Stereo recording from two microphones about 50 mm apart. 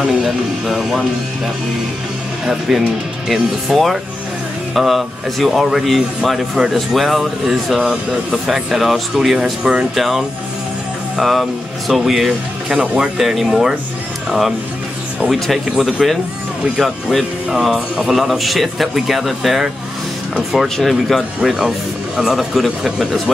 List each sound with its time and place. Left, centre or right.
0.2 s a man's voice: centre
2.7 s a man's voice: centre
7.9 s speech: right
8.5 s a man's voice: centre
9.4 s speech: centre
9.9 s a man's voice: centre
12.3 s speech: centre
13.2 s a man's voice: centre
15.3 s a man's voice: centre
21.4 s speech: centre